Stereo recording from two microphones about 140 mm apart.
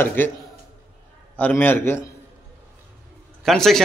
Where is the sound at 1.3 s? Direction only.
10° left (ahead or behind).